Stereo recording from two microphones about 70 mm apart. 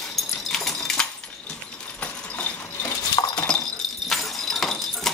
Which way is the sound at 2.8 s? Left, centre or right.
Left.